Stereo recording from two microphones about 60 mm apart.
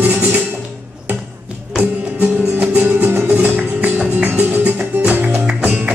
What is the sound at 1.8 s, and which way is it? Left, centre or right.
Music, right.